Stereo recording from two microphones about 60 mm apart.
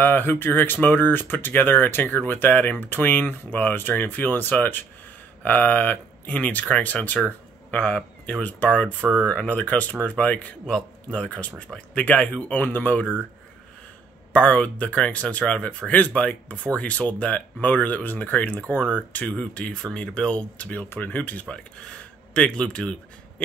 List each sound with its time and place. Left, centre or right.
0.0 s speech: left
14.3 s speech: centre